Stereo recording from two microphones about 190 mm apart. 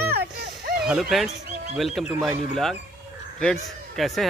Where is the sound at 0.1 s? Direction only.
55° right (ahead or behind).